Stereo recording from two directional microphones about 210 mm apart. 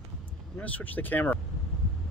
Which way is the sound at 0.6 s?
5° left (ahead or behind).